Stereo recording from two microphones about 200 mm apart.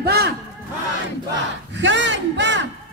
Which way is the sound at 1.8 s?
65° right (ahead or behind).